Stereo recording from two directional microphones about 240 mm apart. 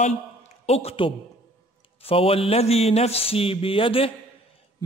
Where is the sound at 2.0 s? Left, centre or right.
Left.